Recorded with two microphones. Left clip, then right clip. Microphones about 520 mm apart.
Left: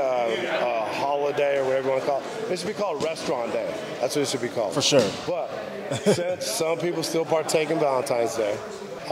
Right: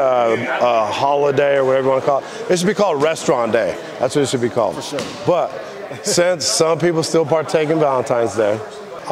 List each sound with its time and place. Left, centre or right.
0.0 s speech: right
5.3 s speech: right
6.1 s a man's voice: right